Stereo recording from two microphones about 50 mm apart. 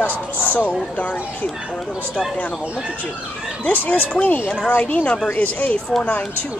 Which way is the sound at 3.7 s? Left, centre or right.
Left.